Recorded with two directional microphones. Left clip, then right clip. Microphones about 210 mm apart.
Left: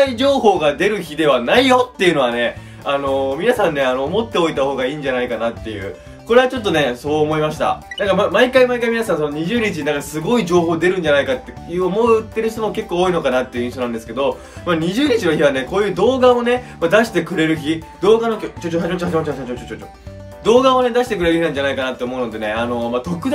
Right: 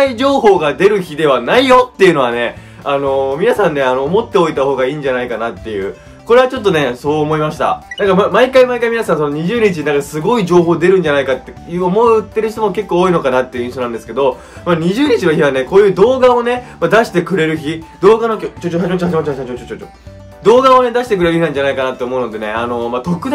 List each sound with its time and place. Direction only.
0.0 s speech: 25° right (ahead or behind)
20.4 s speech: 20° right (ahead or behind)